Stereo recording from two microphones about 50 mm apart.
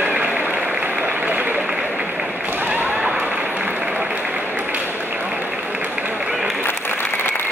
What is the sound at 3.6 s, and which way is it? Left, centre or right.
Applause, right.